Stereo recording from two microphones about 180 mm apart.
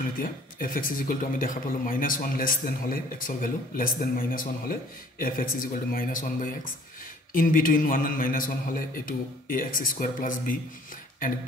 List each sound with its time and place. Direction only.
0.2 s speech: 50° left (ahead or behind)